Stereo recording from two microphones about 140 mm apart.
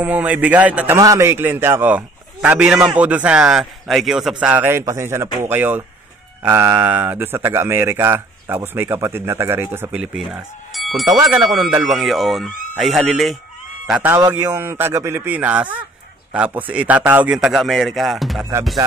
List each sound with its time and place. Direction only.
0.0 s speech: 10° right (ahead or behind)
0.9 s speech: 20° right (ahead or behind)
10.7 s music: centre (ahead or behind)
11.1 s speech: 25° right (ahead or behind)
11.9 s speech: centre (ahead or behind)
14.0 s speech: 15° right (ahead or behind); by 18.5 s centre (ahead or behind)